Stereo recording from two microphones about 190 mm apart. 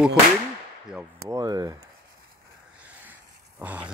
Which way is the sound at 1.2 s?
15° right (ahead or behind).